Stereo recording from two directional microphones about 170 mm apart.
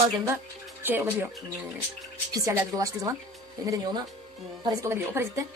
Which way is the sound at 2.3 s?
20° right (ahead or behind).